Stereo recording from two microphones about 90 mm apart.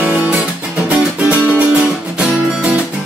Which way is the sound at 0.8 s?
15° right (ahead or behind).